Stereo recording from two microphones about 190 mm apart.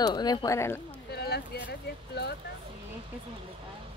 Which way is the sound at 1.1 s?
55° left (ahead or behind).